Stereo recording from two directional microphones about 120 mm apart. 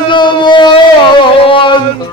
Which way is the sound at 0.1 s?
40° left (ahead or behind).